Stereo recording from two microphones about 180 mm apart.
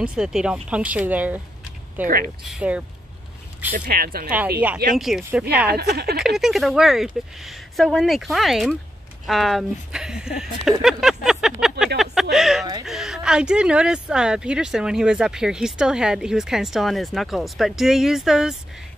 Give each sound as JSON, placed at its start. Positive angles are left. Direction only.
{"t": 0.0, "sound": "speech", "side_deg": -5}
{"t": 2.0, "sound": "speech", "side_deg": -50}
{"t": 2.4, "sound": "speech", "side_deg": -5}
{"t": 3.7, "sound": "a woman's voice", "side_deg": -50}
{"t": 4.9, "sound": "speech", "side_deg": 0}
{"t": 5.7, "sound": "a woman's voice", "side_deg": -60}
{"t": 6.2, "sound": "speech", "side_deg": 0}
{"t": 10.8, "sound": "a sound", "side_deg": 0}
{"t": 12.8, "sound": "speech", "side_deg": 0}